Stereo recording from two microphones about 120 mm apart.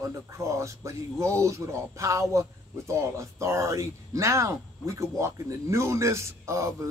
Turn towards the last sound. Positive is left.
turn(degrees=-25)  # may be behind; listen again after turning